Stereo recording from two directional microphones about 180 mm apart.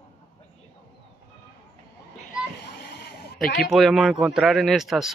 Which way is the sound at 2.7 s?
65° left (ahead or behind).